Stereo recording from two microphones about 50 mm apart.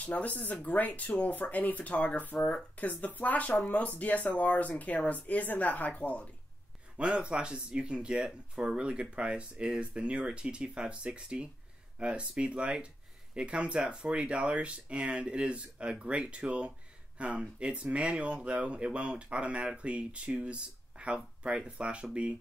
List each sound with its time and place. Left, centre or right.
0.0 s speech: left
7.0 s speech: right